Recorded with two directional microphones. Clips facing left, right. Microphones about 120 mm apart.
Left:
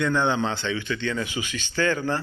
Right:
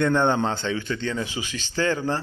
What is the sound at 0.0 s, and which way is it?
Speech, 50° right (ahead or behind).